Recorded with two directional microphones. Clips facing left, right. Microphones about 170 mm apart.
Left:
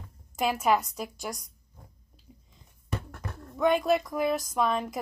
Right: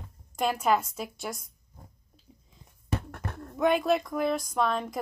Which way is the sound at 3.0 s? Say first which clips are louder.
Right 2 dB; 55° right (ahead or behind).